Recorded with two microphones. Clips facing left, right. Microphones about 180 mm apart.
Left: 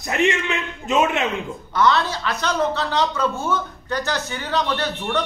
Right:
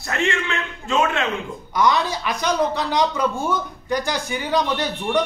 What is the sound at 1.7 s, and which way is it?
Speech, 15° right (ahead or behind).